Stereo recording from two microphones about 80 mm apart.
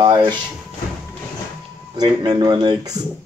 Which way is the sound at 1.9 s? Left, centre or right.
Right.